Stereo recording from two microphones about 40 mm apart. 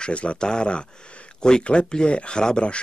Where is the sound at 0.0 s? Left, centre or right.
Left.